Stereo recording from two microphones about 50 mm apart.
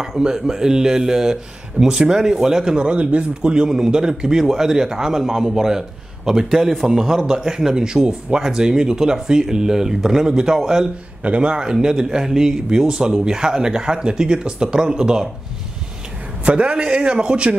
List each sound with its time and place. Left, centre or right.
0.2 s speech: centre
11.2 s speech: right
16.4 s a man's voice: right